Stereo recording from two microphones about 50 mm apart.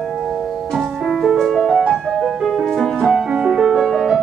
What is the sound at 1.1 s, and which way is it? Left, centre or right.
Music, centre.